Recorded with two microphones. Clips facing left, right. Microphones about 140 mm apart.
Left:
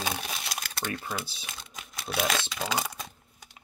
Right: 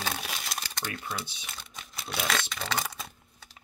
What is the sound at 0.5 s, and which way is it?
Crumpling, 5° left (ahead or behind).